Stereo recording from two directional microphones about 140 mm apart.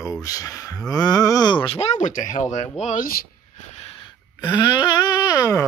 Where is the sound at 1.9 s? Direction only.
65° left (ahead or behind); by 3.2 s 80° left.